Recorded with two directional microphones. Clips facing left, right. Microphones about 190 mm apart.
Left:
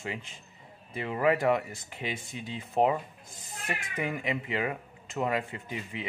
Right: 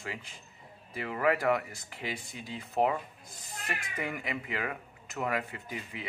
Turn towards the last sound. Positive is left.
turn(degrees=25)  # may be behind; listen again after turning